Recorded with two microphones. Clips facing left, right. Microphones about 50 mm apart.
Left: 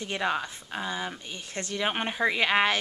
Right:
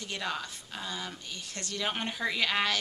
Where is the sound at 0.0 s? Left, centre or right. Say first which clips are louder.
Left 6 dB; left.